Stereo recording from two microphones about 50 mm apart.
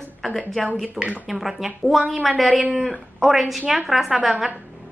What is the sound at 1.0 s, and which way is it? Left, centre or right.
Speech, right.